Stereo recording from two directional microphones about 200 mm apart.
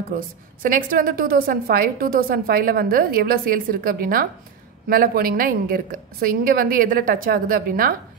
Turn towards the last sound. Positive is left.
turn(degrees=-45)  # may be behind; listen again after turning